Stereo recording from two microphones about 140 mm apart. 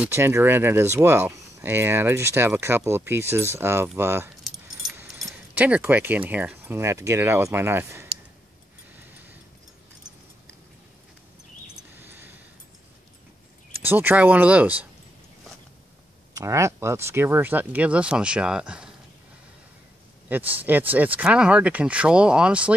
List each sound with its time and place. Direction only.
0.1 s speech: 15° right (ahead or behind)
5.5 s speech: 10° right (ahead or behind)
12.0 s a sound: 15° right (ahead or behind)
13.8 s speech: 15° right (ahead or behind)
16.3 s speech: 20° right (ahead or behind)
20.2 s speech: 10° right (ahead or behind)